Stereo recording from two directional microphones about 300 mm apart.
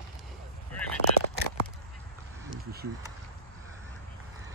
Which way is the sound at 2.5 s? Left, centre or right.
Right.